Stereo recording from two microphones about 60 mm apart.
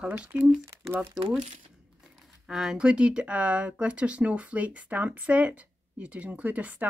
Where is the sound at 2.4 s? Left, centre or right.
Centre.